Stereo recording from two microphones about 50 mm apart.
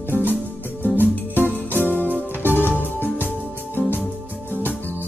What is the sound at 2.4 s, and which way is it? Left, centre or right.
Music, left.